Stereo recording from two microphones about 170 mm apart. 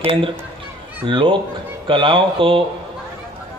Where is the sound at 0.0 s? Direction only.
30° right (ahead or behind).